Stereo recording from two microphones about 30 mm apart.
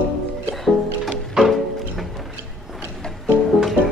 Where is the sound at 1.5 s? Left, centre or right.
Centre.